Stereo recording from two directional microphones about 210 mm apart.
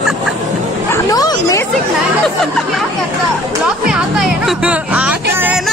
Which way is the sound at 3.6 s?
5° right (ahead or behind).